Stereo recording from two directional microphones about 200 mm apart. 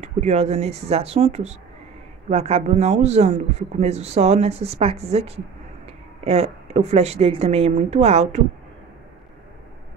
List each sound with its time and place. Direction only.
0.0 s speech: 35° right (ahead or behind)